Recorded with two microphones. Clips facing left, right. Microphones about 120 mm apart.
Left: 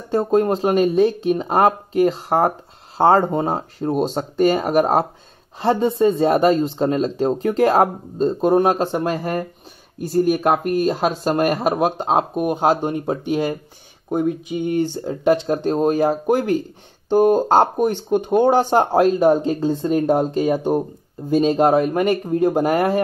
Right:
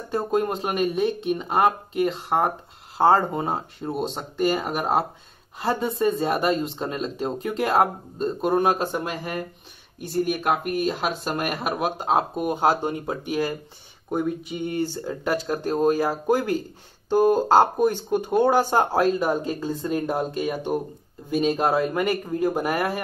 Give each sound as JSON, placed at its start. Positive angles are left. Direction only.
{"t": 0.1, "sound": "speech", "side_deg": 30}